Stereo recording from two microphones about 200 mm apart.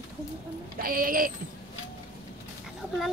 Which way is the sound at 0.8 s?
45° right (ahead or behind).